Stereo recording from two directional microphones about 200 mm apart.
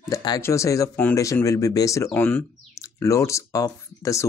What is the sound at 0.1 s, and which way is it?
Speech, 20° left (ahead or behind).